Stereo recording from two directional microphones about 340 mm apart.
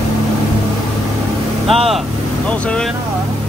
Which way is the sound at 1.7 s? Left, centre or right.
Centre.